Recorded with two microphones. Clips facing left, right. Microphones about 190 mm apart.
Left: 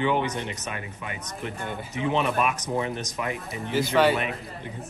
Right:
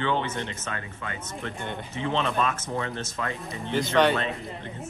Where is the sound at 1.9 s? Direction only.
15° left (ahead or behind).